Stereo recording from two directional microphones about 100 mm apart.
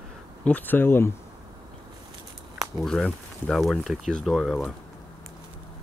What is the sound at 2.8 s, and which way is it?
Speech, 5° left (ahead or behind).